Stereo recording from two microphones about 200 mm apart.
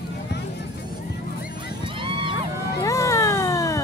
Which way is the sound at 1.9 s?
25° right (ahead or behind).